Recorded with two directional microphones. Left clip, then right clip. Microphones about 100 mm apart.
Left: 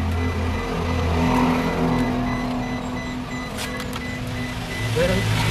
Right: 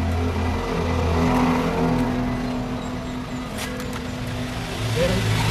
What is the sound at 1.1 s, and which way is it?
Vehicle, 15° left (ahead or behind).